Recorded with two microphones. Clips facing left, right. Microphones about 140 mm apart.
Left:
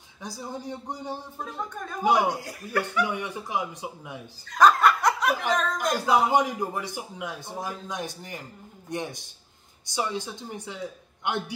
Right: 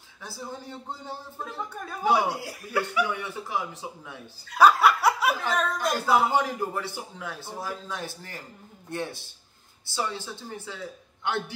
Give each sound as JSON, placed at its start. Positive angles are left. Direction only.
{"t": 0.2, "sound": "a man's voice", "side_deg": 15}
{"t": 1.7, "sound": "a woman's voice", "side_deg": -5}
{"t": 3.1, "sound": "a man's voice", "side_deg": 15}
{"t": 4.5, "sound": "snicker", "side_deg": -10}
{"t": 5.5, "sound": "a woman's voice", "side_deg": -5}
{"t": 5.9, "sound": "a man's voice", "side_deg": 15}